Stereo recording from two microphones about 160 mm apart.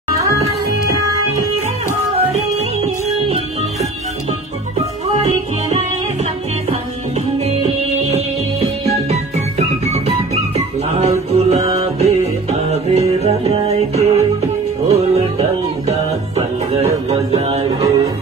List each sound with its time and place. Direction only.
2.3 s music: 40° right (ahead or behind)
4.7 s music: 40° right (ahead or behind)
7.3 s music: 40° right (ahead or behind)
17.7 s music: 25° right (ahead or behind)